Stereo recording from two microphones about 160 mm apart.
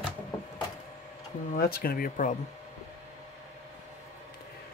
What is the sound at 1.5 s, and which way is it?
Speech, 70° left (ahead or behind).